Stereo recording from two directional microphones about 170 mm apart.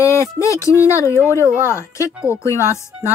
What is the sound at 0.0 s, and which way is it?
Speech, 15° left (ahead or behind).